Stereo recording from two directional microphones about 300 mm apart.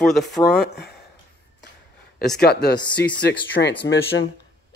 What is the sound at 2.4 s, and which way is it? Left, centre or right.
Speech, left.